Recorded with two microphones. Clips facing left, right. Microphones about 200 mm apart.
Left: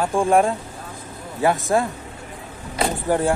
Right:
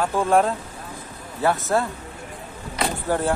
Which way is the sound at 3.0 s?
10° left (ahead or behind).